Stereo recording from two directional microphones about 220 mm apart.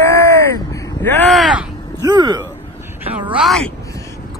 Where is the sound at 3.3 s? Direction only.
Centre (ahead or behind).